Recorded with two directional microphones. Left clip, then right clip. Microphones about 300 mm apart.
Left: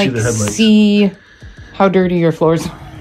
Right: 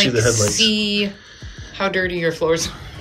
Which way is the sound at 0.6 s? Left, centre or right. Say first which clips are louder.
Left 5 dB; centre.